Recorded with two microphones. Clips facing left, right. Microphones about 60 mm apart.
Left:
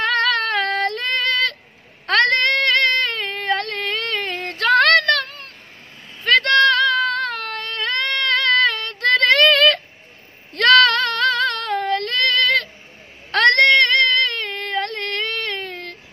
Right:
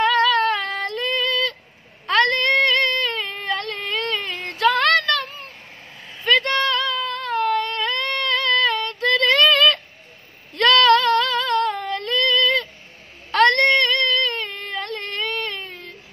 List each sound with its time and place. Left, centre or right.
0.0 s female singing: left
2.0 s a sound: left
10.5 s female singing: left
13.3 s baby cry: left